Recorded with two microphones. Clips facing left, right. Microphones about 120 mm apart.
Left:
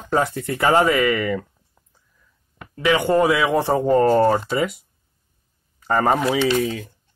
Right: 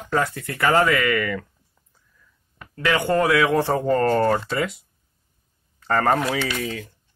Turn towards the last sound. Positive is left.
turn(degrees=15)  # may be behind; listen again after turning